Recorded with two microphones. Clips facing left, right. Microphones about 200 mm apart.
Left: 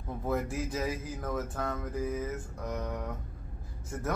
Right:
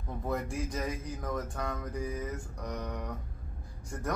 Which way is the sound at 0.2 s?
5° left (ahead or behind).